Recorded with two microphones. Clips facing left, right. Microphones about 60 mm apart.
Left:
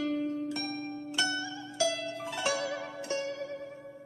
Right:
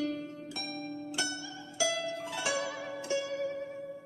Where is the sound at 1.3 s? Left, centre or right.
Left.